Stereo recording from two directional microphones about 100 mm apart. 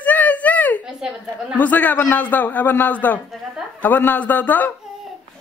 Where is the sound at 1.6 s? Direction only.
15° left (ahead or behind).